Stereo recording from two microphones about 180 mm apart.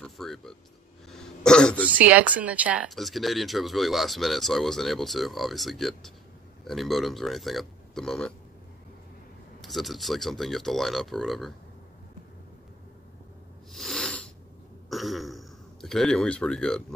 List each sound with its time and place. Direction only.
0.0 s speech: centre (ahead or behind)
1.1 s throat clearing: 5° left (ahead or behind)
1.9 s speech: 10° right (ahead or behind)
9.6 s speech: centre (ahead or behind)
13.7 s a sound: centre (ahead or behind)
14.9 s speech: centre (ahead or behind)